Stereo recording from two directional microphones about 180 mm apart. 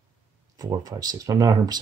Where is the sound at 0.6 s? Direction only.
20° right (ahead or behind).